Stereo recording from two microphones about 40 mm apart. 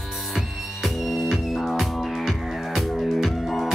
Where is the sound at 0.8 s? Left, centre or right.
Centre.